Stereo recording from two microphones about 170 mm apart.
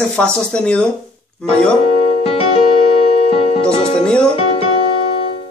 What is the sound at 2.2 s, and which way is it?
Music, 35° left (ahead or behind).